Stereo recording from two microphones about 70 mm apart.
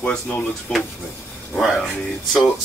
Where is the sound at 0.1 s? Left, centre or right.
Centre.